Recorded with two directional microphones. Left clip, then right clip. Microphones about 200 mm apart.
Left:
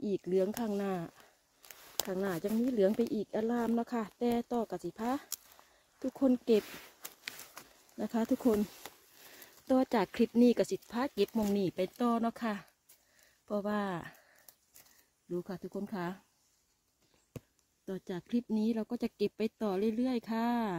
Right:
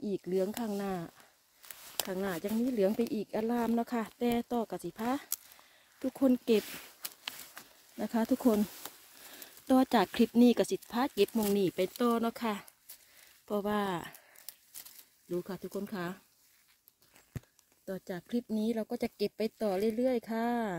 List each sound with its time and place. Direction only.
0.0 s speech: centre (ahead or behind)
17.8 s speech: 20° right (ahead or behind)